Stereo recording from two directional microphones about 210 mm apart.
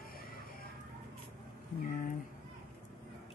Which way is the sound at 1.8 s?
40° left (ahead or behind).